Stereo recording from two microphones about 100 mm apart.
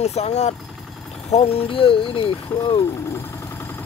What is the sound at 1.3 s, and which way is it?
Speech, 80° left.